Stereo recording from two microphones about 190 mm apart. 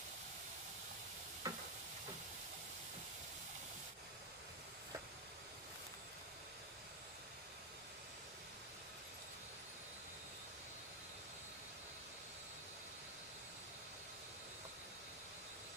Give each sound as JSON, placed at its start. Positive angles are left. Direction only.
{"t": 1.4, "sound": "stir", "side_deg": -20}